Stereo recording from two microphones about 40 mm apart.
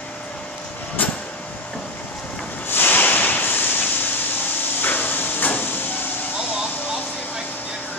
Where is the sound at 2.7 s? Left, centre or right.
Left.